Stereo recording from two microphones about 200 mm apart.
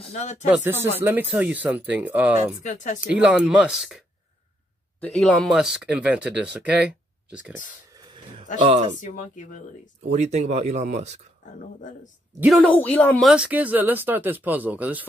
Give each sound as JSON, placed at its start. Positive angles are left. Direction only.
{"t": 0.0, "sound": "speech", "side_deg": 35}
{"t": 0.5, "sound": "speech", "side_deg": -10}
{"t": 2.6, "sound": "speech", "side_deg": 35}
{"t": 3.0, "sound": "speech", "side_deg": -5}
{"t": 5.0, "sound": "speech", "side_deg": 5}
{"t": 9.0, "sound": "speech", "side_deg": 40}
{"t": 10.1, "sound": "speech", "side_deg": -35}
{"t": 12.4, "sound": "speech", "side_deg": 5}
{"t": 13.3, "sound": "speech", "side_deg": -5}